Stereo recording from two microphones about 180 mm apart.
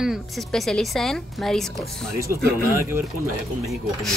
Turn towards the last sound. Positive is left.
turn(degrees=0)  # may be behind; listen again after turning